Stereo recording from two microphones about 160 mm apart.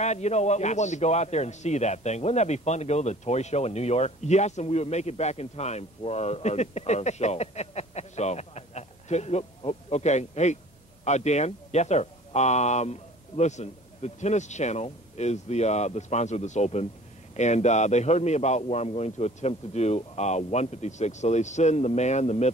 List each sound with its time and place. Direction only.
0.0 s a man's voice: 45° left (ahead or behind)